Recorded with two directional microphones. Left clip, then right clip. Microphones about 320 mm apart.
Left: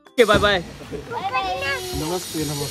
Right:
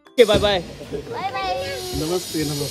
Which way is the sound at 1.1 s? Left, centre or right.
Centre.